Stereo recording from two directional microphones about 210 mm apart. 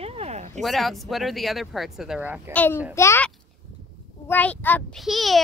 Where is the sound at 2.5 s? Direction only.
10° left (ahead or behind).